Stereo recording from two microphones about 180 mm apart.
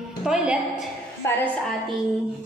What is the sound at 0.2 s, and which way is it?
Speech, 5° right (ahead or behind).